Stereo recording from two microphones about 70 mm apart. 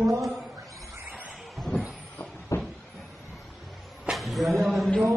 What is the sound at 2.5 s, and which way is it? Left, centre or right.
Cupboard open or close, left.